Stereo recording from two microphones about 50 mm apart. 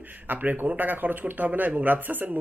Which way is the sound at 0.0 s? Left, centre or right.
Right.